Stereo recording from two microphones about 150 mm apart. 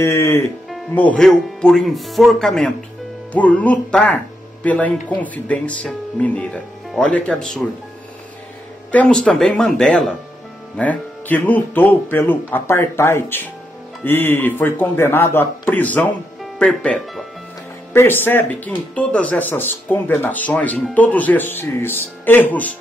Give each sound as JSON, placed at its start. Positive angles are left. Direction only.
{"t": 0.0, "sound": "speech", "side_deg": 15}
{"t": 8.9, "sound": "speech", "side_deg": 10}
{"t": 17.9, "sound": "speech", "side_deg": 15}